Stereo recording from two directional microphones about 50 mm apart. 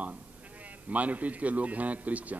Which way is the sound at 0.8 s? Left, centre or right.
Right.